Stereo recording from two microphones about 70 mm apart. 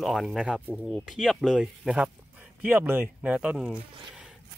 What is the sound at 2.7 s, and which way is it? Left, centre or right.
Speech, right.